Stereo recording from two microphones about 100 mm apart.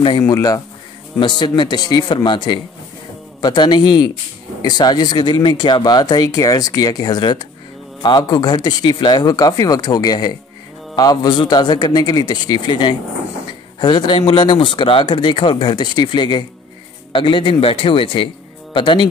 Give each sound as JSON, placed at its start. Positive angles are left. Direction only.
{"t": 0.3, "sound": "a man's voice", "side_deg": 40}